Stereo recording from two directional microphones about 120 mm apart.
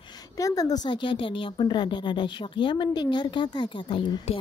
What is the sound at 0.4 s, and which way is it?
A woman's voice, 30° left (ahead or behind).